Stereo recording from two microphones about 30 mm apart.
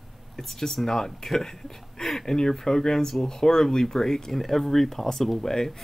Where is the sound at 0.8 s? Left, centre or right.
Left.